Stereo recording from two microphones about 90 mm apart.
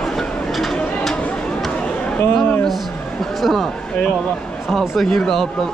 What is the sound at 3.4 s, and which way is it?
Speech, centre (ahead or behind).